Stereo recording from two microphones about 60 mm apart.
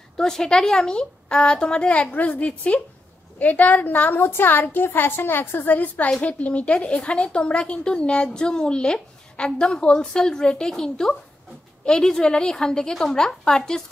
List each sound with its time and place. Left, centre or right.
0.2 s a woman's voice: centre; by 5.8 s left
5.8 s a woman's voice: left